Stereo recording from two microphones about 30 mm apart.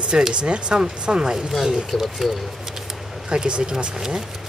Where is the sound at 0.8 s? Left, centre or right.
Right.